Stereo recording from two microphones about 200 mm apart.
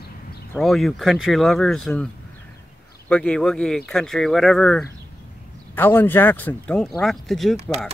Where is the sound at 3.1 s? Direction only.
5° left (ahead or behind).